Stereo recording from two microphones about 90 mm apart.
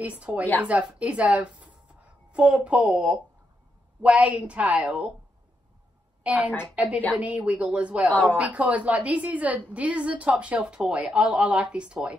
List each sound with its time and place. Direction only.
0.0 s a woman's voice: 15° right (ahead or behind)
6.2 s a woman's voice: 15° right (ahead or behind)
8.1 s a woman's voice: 20° left (ahead or behind)
8.4 s a woman's voice: 15° right (ahead or behind)